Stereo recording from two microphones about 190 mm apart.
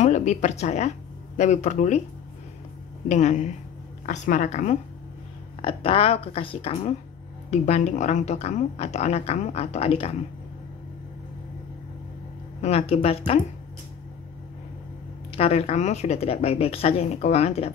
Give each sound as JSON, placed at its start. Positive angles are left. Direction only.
{"t": 0.0, "sound": "speech", "side_deg": 40}
{"t": 3.1, "sound": "a woman's voice", "side_deg": 40}
{"t": 5.6, "sound": "a woman's voice", "side_deg": 30}
{"t": 12.6, "sound": "a woman's voice", "side_deg": 30}
{"t": 15.3, "sound": "a woman's voice", "side_deg": 35}